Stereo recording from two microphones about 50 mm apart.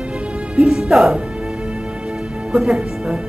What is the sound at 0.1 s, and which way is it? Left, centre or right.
Music, centre.